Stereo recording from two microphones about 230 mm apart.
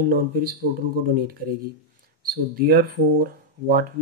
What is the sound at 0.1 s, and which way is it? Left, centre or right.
Speech, right.